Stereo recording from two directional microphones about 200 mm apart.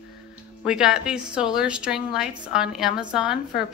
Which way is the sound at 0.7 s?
5° right (ahead or behind).